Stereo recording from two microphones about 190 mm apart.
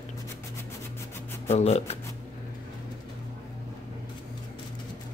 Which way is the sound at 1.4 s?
35° left (ahead or behind).